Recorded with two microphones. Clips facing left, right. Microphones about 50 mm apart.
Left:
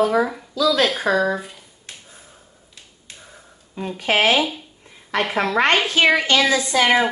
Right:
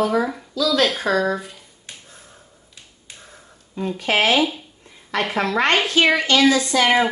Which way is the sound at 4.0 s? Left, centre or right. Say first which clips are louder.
Left 1 dB; centre.